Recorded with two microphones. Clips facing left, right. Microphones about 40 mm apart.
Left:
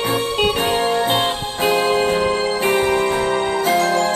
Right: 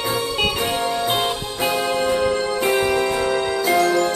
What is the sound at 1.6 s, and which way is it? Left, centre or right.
Music, left.